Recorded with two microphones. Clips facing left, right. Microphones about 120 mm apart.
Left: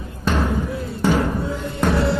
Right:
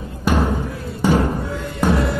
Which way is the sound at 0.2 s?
10° right (ahead or behind).